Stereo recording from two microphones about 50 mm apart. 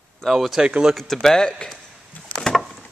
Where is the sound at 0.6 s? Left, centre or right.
Centre.